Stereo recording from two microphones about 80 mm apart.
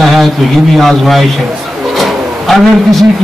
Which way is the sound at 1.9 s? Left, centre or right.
Centre.